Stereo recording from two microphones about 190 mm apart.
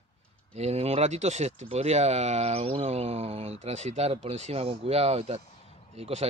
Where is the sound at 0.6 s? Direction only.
35° right (ahead or behind).